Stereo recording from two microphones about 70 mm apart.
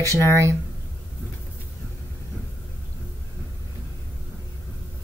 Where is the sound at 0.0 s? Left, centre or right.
Right.